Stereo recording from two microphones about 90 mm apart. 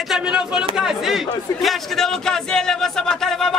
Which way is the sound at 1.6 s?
5° left (ahead or behind).